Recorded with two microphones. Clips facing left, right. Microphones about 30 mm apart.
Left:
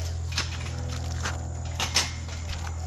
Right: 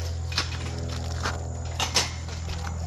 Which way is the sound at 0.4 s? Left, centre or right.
Right.